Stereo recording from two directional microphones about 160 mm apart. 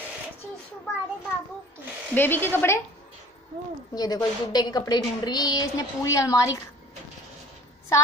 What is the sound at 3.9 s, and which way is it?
A woman's voice, 25° left (ahead or behind).